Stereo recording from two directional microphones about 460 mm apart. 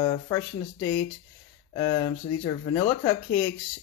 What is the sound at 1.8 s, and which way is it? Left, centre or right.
Speech, centre.